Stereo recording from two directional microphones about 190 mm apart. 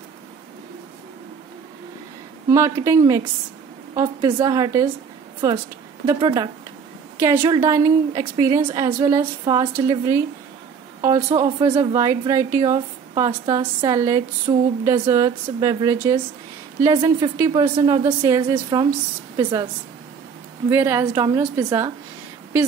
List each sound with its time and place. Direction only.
2.5 s a woman's voice: 15° right (ahead or behind)
20.7 s a woman's voice: 10° right (ahead or behind)